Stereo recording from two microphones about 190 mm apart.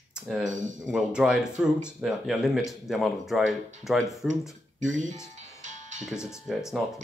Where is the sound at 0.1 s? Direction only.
5° right (ahead or behind).